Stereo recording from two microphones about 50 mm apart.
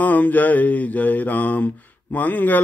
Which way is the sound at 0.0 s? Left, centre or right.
Left.